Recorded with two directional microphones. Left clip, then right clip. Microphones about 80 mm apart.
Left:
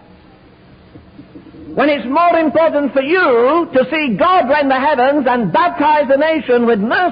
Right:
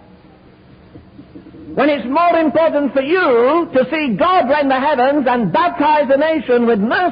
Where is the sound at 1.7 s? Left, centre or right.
Left.